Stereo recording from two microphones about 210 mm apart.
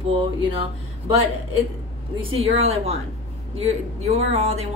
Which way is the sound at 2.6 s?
30° right (ahead or behind).